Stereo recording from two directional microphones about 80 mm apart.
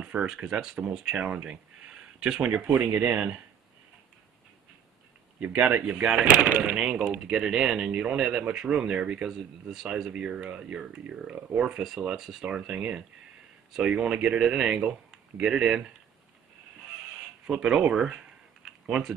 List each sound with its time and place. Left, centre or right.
0.0 s speech: centre
2.7 s speech: right
5.4 s speech: centre
6.5 s speech: right
6.8 s speech: centre
9.3 s speech: centre
12.4 s speech: centre
17.5 s speech: centre